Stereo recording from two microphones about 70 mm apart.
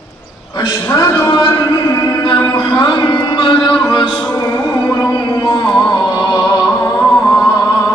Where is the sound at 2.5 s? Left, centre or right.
Left.